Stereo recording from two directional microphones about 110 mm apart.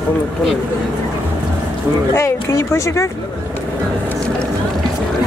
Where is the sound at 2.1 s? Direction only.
25° left (ahead or behind).